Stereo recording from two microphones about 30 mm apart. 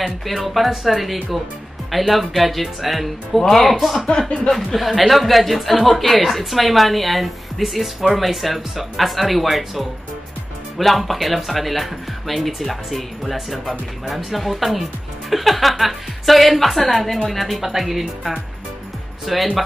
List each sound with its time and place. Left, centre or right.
0.0 s speech: centre
4.3 s speech: left
4.7 s speech: centre
17.6 s speech: centre